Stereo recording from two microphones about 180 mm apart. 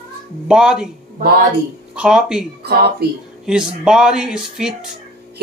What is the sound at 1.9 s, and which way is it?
Speech, 5° right (ahead or behind).